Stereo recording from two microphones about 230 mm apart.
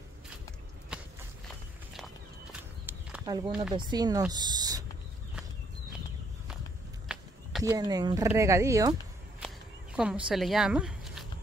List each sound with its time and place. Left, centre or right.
0.9 s walk: centre
2.9 s a sound: centre
3.7 s speech: centre
4.3 s a sound: centre
7.6 s speech: centre
9.9 s speech: centre